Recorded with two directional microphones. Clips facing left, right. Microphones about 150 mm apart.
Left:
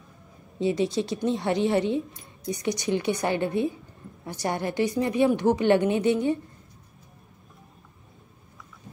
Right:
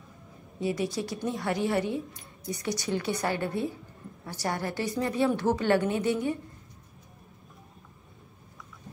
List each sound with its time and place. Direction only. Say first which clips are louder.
0.6 s a woman's voice: left 5 dB; 25° left (ahead or behind)